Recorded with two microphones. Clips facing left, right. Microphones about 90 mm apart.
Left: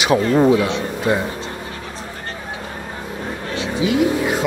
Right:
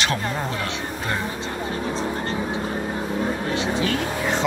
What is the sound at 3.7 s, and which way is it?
Vehicle, 10° left (ahead or behind).